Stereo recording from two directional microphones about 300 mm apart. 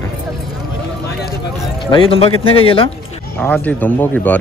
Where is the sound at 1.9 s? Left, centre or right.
Centre.